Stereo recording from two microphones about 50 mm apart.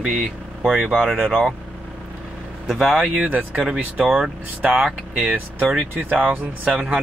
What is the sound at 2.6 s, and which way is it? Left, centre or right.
Speech, centre.